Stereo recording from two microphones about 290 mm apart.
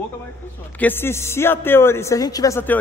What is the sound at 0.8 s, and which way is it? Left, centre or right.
A woman's voice, centre.